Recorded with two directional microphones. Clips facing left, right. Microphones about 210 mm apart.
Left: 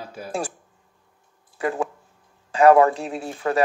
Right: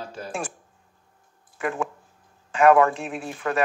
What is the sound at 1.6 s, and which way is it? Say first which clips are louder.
Speech: left 3 dB; 35° left (ahead or behind).